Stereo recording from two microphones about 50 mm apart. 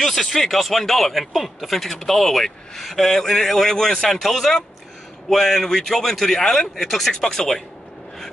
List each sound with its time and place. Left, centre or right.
0.0 s a man's voice: centre